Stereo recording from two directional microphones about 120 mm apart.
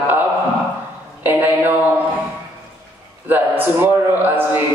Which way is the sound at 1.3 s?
15° right (ahead or behind).